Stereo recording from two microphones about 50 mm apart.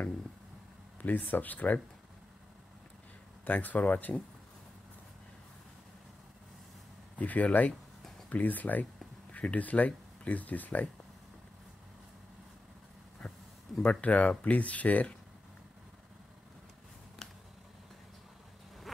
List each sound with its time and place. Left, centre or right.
1.0 s speech: left
3.4 s speech: left
7.2 s speech: left
13.8 s speech: left